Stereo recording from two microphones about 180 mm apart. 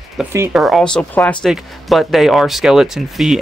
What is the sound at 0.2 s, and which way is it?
Speech, 10° right (ahead or behind).